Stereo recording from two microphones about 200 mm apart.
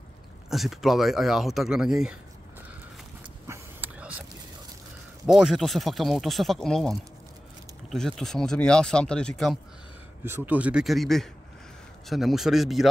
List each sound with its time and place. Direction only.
0.5 s speech: centre (ahead or behind)
3.4 s dog: 10° right (ahead or behind)
5.2 s speech: 5° right (ahead or behind)
10.2 s speech: 10° right (ahead or behind)